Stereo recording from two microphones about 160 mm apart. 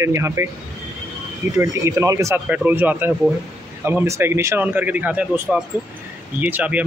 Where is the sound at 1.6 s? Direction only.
20° right (ahead or behind).